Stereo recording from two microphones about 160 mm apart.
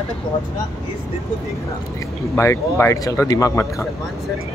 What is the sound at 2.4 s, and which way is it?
Speech, 15° left (ahead or behind).